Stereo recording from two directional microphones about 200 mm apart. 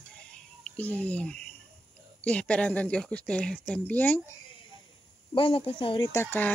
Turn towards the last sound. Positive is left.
turn(degrees=10)  # may be behind; listen again after turning